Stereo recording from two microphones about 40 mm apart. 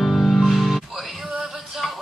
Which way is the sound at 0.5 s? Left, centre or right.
Centre.